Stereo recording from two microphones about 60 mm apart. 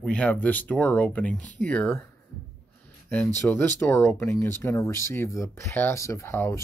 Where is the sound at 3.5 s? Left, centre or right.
Left.